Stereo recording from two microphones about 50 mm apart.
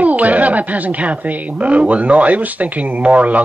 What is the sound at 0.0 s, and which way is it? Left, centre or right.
Speech, right.